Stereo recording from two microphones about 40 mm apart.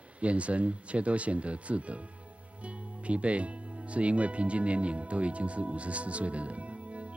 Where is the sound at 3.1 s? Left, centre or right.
Right.